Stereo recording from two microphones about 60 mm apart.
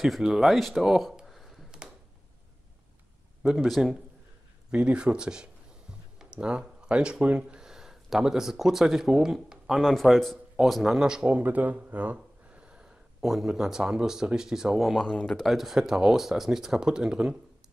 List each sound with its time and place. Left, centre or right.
0.0 s speech: centre
3.4 s speech: centre
4.6 s speech: centre
9.8 s speech: centre
11.3 s speech: right; by 15.0 s centre
15.0 s speech: centre